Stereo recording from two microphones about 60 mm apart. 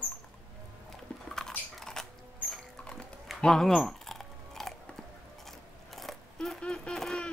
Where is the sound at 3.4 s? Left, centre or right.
Centre.